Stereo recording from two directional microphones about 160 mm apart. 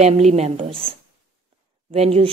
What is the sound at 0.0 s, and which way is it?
Speech, 45° right (ahead or behind).